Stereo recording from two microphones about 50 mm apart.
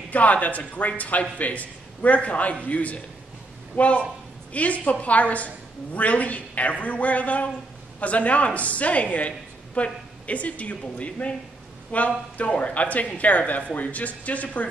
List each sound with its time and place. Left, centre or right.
0.1 s a man's voice: left